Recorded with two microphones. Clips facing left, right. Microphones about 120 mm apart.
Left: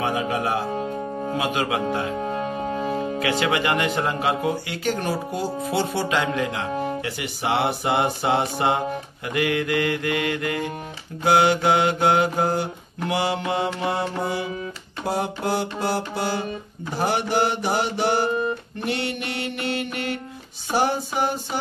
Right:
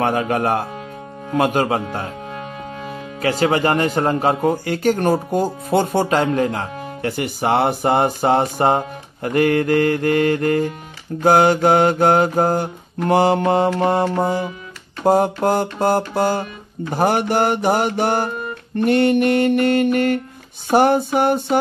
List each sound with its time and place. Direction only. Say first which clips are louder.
0.0 s speech: right 5 dB; 55° right (ahead or behind)
3.2 s speech: right 8 dB; 40° right (ahead or behind)
20.7 s music: right 8 dB; 55° right (ahead or behind)